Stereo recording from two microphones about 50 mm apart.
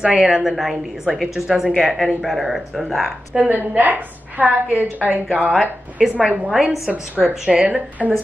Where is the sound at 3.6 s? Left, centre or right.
Right.